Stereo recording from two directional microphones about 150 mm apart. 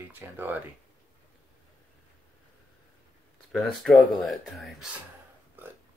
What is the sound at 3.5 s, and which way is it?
Speech, centre (ahead or behind).